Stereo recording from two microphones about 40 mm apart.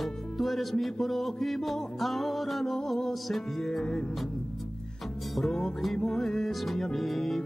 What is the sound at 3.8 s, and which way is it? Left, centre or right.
Music, left.